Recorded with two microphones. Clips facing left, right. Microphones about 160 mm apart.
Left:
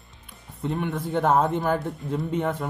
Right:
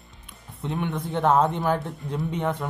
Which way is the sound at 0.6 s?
Centre (ahead or behind).